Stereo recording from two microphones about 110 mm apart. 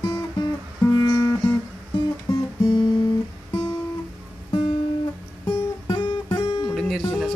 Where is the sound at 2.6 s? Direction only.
40° left (ahead or behind).